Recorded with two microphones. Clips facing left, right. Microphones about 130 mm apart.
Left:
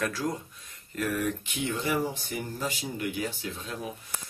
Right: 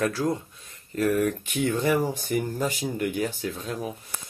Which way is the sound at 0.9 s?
50° right (ahead or behind).